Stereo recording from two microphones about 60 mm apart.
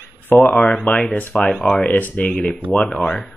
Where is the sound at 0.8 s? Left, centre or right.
Centre.